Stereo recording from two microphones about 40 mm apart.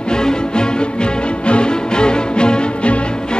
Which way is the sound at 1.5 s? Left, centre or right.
Left.